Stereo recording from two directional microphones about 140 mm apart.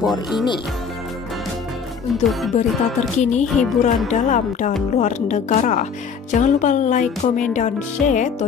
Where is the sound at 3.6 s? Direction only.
60° left (ahead or behind).